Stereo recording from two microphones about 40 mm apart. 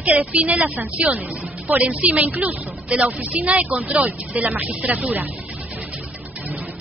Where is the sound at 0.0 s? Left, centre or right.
Right.